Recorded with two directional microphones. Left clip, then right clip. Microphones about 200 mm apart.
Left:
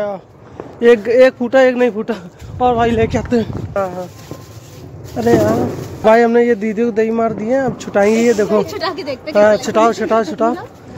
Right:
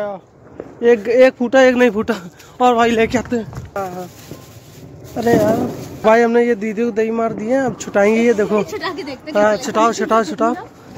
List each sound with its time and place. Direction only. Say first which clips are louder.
0.7 s speech: left 2 dB; centre (ahead or behind); by 3.3 s 25° right (ahead or behind)
3.3 s speech: left 6 dB; 5° left (ahead or behind)
5.2 s speech: left 1 dB; 10° right (ahead or behind)
8.6 s speech: left 3 dB; 15° left (ahead or behind)
9.4 s speech: left 3 dB; 5° right (ahead or behind)